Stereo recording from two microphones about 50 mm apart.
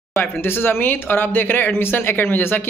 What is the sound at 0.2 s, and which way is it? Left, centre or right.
Speech, left.